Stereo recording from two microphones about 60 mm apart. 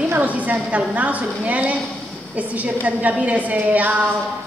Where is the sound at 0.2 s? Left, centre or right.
Right.